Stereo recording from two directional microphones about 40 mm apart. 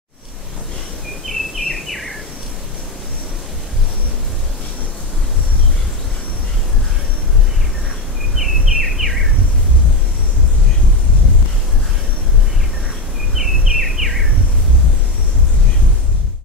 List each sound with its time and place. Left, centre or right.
1.2 s bird vocalization: centre
8.4 s bird vocalization: centre
13.4 s bird vocalization: centre